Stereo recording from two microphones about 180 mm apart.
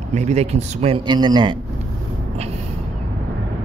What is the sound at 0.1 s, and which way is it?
A man's voice, 40° right (ahead or behind).